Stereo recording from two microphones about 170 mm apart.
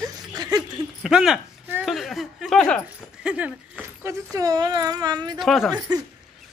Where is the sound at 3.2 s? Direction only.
5° right (ahead or behind).